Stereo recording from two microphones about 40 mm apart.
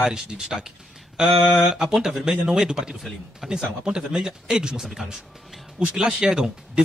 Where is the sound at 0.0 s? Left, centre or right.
Centre.